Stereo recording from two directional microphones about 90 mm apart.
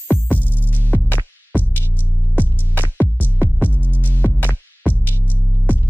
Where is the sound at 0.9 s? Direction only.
20° left (ahead or behind).